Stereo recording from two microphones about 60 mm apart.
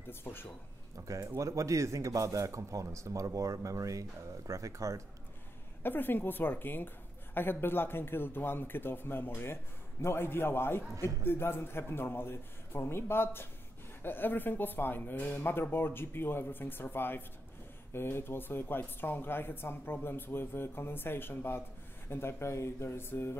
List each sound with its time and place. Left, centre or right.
0.1 s speech: left
1.0 s speech: right
5.8 s speech: left
15.5 s speech: left